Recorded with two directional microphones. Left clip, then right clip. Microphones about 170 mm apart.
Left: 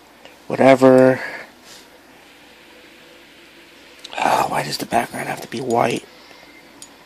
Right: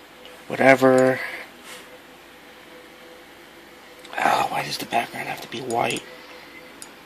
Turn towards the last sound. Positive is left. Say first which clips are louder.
# left 5 dB
turn(degrees=30)  # may be behind; listen again after turning